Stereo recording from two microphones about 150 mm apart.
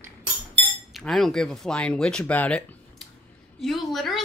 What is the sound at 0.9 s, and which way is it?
Speech, centre (ahead or behind).